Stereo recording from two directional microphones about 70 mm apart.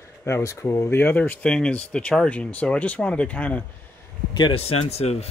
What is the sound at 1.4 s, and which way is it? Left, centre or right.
Speech, centre.